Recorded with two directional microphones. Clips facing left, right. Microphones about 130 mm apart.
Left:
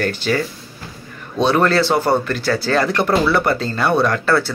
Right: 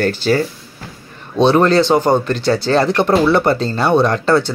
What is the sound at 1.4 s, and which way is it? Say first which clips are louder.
Speech: right 4 dB; 25° right (ahead or behind).